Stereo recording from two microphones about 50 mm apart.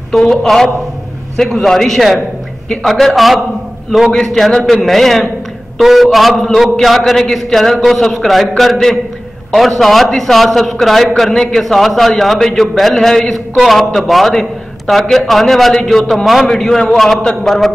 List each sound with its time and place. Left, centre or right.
0.3 s a man's voice: centre